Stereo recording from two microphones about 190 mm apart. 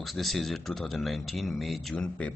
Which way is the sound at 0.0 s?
Centre (ahead or behind).